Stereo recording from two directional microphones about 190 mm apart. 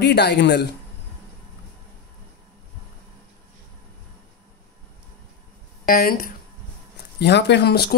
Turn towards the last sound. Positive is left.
turn(degrees=60)  # may be behind; listen again after turning